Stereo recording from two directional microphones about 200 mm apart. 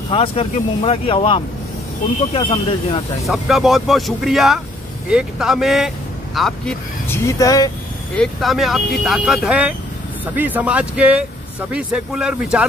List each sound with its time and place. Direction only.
0.1 s speech: 30° left (ahead or behind)
3.3 s speech: centre (ahead or behind)
7.1 s speech: 15° left (ahead or behind)
8.2 s speech: centre (ahead or behind)